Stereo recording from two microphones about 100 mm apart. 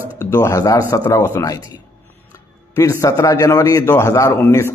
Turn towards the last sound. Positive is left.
turn(degrees=25)  # may be behind; listen again after turning